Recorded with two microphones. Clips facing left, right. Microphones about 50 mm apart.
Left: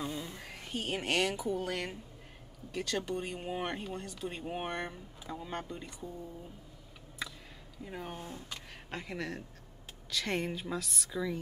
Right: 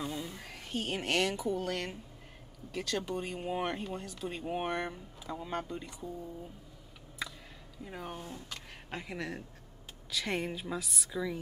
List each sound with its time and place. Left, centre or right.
0.0 s speech: centre
7.8 s speech: centre
8.2 s speech: left
8.9 s speech: centre